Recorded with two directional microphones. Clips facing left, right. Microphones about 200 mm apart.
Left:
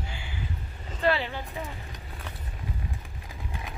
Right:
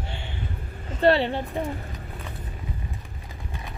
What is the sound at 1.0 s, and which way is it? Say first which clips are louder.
Speech: right 7 dB; 35° right (ahead or behind).